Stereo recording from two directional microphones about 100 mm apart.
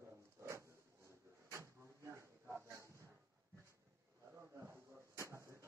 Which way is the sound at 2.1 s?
30° right (ahead or behind).